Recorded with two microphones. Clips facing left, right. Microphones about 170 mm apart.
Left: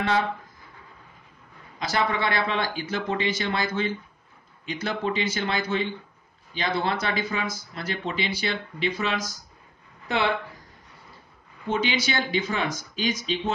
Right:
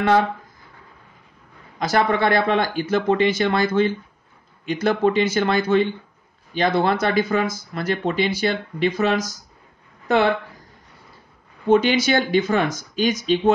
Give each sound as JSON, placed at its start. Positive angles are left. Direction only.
{"t": 1.8, "sound": "speech", "side_deg": -50}
{"t": 11.7, "sound": "speech", "side_deg": -50}